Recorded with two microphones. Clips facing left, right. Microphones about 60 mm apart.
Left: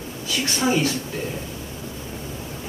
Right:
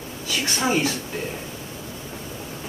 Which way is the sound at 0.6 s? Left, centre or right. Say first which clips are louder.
Left 1 dB; right.